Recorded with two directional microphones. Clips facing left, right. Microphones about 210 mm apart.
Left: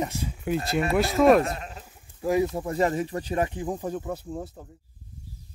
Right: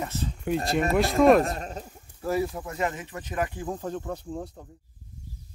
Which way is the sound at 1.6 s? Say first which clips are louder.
Right 4 dB; 40° right (ahead or behind).